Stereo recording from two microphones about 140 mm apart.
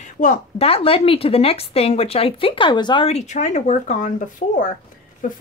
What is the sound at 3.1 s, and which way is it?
Speech, 55° left (ahead or behind).